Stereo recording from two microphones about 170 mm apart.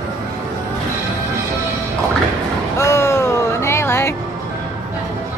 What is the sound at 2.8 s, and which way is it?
Music, 15° left (ahead or behind).